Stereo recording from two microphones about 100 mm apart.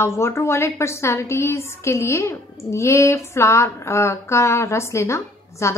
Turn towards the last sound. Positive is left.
turn(degrees=30)  # may be behind; listen again after turning